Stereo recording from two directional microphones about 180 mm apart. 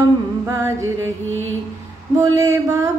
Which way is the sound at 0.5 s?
15° right (ahead or behind).